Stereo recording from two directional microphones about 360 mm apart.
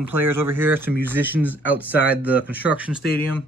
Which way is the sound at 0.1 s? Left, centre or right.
Centre.